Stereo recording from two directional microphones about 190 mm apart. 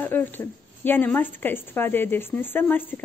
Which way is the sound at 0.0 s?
10° left (ahead or behind).